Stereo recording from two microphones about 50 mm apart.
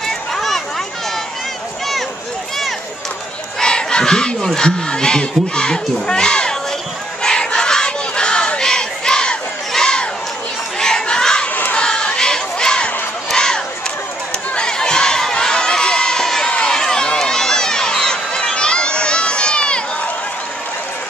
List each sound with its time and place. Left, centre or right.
0.0 s a sound: centre
3.5 s battle cry: centre
4.6 s speech: centre
7.2 s battle cry: centre
9.7 s a sound: centre
11.4 s crowd: left
11.8 s crowd: centre
16.4 s run: left
16.7 s run: centre